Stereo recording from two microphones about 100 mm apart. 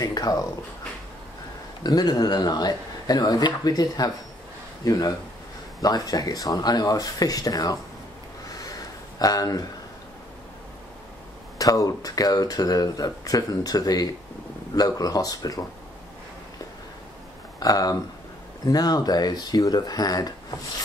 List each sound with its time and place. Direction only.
0.0 s speech: 40° left (ahead or behind)
1.8 s speech: 40° left (ahead or behind)
8.5 s crow: 35° left (ahead or behind)
9.2 s speech: 40° left (ahead or behind)
11.5 s speech: 35° left (ahead or behind)
17.6 s speech: 40° left (ahead or behind)